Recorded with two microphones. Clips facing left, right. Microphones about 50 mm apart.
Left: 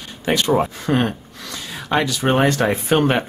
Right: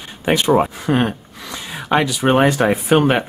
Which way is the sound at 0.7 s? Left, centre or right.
Centre.